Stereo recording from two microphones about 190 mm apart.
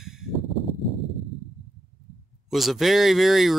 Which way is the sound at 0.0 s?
Centre (ahead or behind).